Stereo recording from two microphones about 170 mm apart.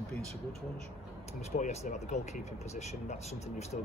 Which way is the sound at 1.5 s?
40° left (ahead or behind).